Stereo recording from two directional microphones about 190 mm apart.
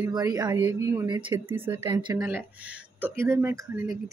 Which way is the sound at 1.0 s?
25° right (ahead or behind).